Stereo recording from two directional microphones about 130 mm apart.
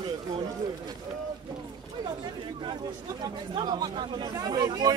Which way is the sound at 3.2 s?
35° right (ahead or behind).